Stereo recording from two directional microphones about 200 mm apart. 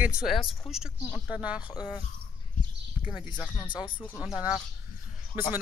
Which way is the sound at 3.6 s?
25° left (ahead or behind).